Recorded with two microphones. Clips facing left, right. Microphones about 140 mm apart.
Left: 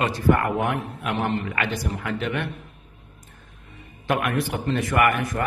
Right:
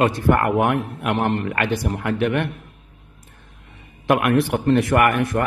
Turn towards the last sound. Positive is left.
turn(degrees=-60)  # may be behind; listen again after turning